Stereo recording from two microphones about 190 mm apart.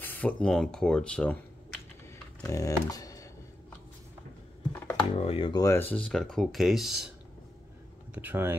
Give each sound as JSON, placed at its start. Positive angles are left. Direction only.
{"t": 0.0, "sound": "speech", "side_deg": 10}
{"t": 2.4, "sound": "speech", "side_deg": 15}
{"t": 5.1, "sound": "speech", "side_deg": 30}
{"t": 5.9, "sound": "speech", "side_deg": 5}
{"t": 8.1, "sound": "speech", "side_deg": -10}